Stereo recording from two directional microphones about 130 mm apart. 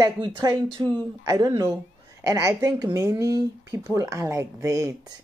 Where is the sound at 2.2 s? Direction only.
25° right (ahead or behind).